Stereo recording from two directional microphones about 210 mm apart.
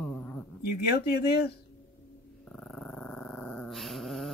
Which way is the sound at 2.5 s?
5° left (ahead or behind).